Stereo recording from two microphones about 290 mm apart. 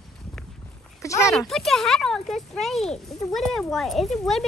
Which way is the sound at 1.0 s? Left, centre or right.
Centre.